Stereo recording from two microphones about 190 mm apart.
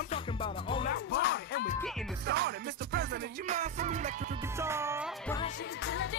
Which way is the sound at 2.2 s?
60° right (ahead or behind).